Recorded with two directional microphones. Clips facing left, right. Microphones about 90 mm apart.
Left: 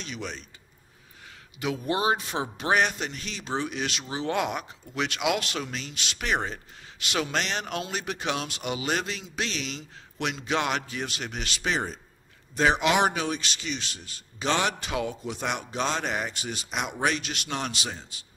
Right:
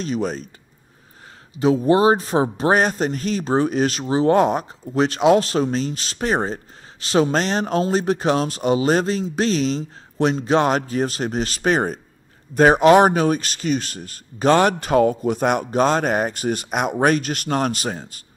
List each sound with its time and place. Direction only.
0.0 s speech: 40° right (ahead or behind)
1.5 s speech: 35° right (ahead or behind)